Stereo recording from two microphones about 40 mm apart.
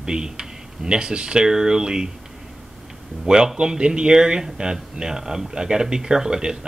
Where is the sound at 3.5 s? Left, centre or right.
Right.